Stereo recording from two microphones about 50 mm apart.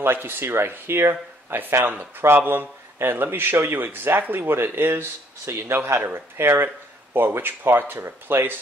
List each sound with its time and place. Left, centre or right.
0.0 s speech: right
5.4 s speech: right